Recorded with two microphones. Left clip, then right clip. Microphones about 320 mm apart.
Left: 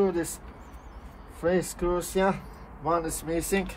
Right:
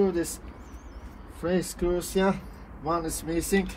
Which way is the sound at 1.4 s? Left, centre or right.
Left.